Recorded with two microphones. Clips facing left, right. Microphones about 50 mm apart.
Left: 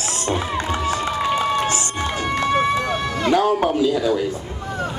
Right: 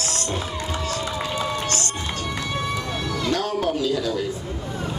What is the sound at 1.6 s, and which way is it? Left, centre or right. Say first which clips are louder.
Run: left 4 dB; centre.